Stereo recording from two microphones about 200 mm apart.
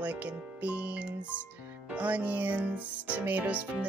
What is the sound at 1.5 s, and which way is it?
Music, 5° right (ahead or behind).